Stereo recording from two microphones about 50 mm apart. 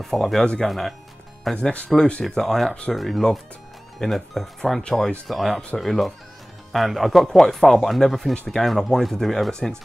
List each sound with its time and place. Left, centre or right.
0.0 s speech: centre
1.5 s speech: centre
2.2 s speech: centre